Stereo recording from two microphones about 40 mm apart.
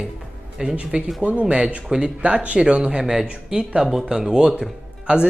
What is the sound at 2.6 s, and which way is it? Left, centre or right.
A woman's voice, right.